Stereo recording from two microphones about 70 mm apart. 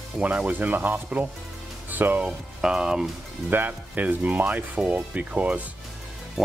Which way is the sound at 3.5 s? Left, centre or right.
Right.